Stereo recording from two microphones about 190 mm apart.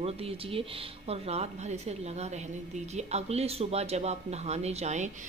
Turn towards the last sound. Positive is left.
turn(degrees=-35)  # may be behind; listen again after turning